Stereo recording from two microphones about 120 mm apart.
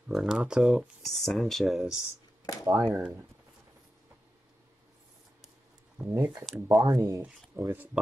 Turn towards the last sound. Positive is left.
turn(degrees=-15)  # may be behind; listen again after turning